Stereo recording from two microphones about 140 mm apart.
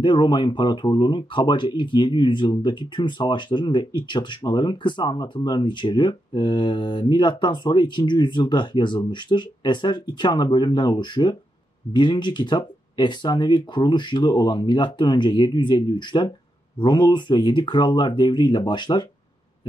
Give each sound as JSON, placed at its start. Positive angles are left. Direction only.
{"t": 0.0, "sound": "speech", "side_deg": 30}